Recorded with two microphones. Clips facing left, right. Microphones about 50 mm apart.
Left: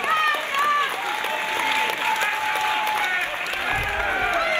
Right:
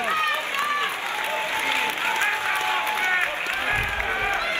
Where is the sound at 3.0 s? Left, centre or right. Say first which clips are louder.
Right 1 dB; right.